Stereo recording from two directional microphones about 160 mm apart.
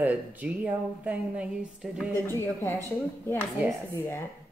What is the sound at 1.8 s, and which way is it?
Music, 5° right (ahead or behind).